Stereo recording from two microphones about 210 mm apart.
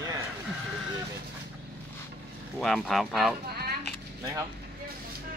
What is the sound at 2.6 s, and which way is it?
Speech, centre (ahead or behind).